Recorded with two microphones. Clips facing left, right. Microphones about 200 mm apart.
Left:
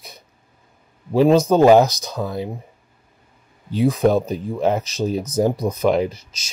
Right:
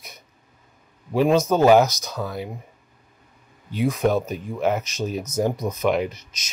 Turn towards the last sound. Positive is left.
turn(degrees=30)  # may be behind; listen again after turning